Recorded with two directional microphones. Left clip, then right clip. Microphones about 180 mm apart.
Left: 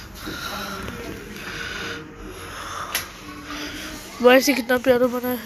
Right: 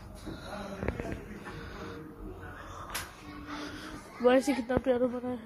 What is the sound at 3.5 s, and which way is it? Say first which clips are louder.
Music: left 9 dB; 25° right (ahead or behind).